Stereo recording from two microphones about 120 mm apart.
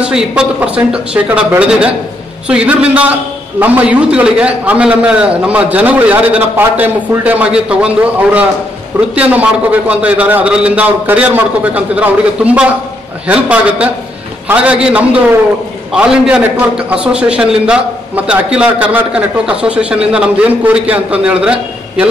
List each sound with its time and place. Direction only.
0.0 s a man's voice: 5° right (ahead or behind)